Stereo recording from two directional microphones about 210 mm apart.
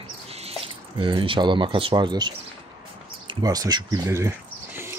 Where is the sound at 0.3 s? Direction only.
30° right (ahead or behind).